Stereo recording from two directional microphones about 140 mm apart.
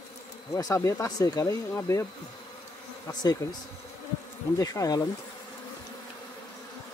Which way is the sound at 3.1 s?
30° left (ahead or behind).